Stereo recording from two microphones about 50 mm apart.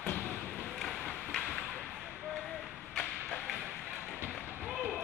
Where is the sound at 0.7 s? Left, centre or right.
Centre.